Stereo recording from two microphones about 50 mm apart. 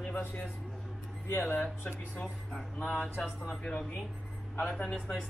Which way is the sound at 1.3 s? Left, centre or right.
Left.